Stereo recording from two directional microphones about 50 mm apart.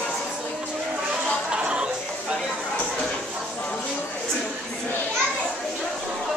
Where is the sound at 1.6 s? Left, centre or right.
Centre.